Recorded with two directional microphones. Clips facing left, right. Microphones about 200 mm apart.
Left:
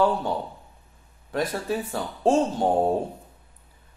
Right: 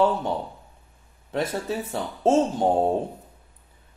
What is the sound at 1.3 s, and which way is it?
Speech, 25° right (ahead or behind).